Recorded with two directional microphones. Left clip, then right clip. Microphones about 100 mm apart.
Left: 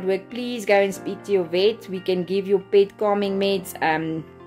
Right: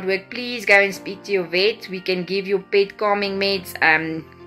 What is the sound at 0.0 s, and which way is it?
A woman's voice, 40° left (ahead or behind).